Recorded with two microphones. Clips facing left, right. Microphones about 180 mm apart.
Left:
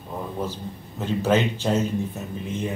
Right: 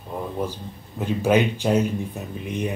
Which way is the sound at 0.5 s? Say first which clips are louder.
Left 2 dB; 10° right (ahead or behind).